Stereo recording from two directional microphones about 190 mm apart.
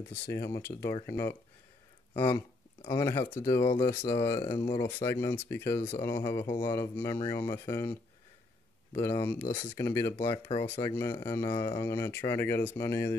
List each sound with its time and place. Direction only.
0.1 s speech: 15° left (ahead or behind)
5.0 s speech: 15° left (ahead or behind)
9.5 s speech: 25° left (ahead or behind)
9.8 s speech: 15° left (ahead or behind)